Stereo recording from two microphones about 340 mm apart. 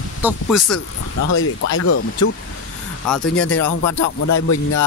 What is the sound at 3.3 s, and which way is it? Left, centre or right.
Speech, left.